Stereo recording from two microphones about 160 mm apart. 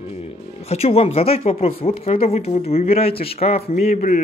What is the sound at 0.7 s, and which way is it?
Speech, 40° left (ahead or behind).